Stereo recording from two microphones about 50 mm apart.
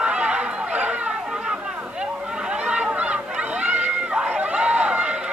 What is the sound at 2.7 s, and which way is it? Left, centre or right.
Run, right.